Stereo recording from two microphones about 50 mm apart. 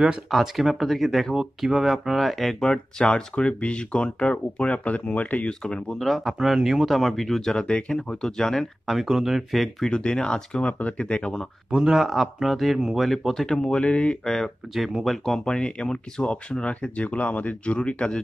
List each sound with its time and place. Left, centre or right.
0.3 s speech: centre; by 5.5 s left
5.5 s speech: centre
5.9 s speech: centre
8.8 s speech: centre
9.8 s speech: centre
10.7 s speech: left
11.7 s speech: centre
13.5 s speech: centre
14.2 s speech: centre
14.7 s speech: centre
15.2 s speech: centre